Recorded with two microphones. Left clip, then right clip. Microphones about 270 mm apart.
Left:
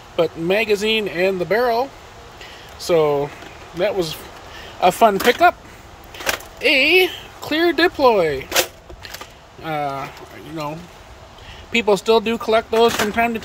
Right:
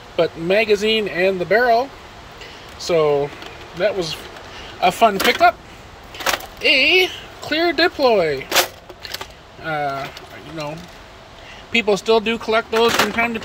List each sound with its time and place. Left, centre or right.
0.1 s speech: centre
2.9 s speech: centre
6.2 s a sound: centre
9.7 s speech: centre
11.7 s speech: centre